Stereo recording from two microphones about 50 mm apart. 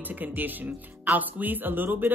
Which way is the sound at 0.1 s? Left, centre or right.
Right.